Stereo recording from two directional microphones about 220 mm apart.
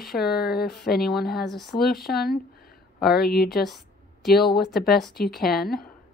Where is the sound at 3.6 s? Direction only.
Centre (ahead or behind).